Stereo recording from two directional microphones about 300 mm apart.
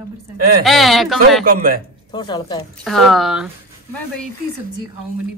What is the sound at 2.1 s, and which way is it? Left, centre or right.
Speech, centre.